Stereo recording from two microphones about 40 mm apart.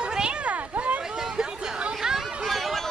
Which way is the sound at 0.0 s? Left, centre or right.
Right.